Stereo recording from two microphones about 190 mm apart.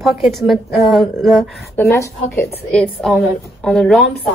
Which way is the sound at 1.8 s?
15° left (ahead or behind).